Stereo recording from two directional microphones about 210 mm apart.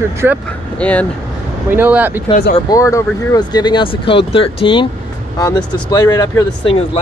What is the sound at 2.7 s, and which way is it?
Speech, 15° left (ahead or behind).